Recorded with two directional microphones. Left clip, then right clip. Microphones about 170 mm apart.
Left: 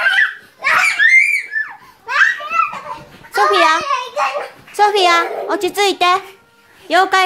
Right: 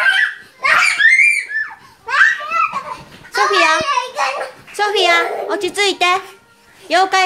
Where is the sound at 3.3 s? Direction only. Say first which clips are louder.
Left 1 dB; 20° left (ahead or behind).